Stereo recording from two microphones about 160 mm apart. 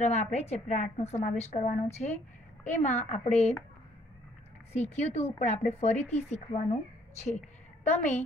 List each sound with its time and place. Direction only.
0.0 s a woman's voice: 45° left (ahead or behind)
4.7 s speech: 40° left (ahead or behind)